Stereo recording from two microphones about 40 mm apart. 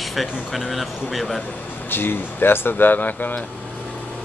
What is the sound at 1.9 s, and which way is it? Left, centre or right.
Speech, left.